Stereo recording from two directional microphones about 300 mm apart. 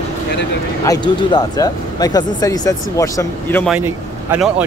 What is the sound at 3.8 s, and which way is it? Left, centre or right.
Speech, centre.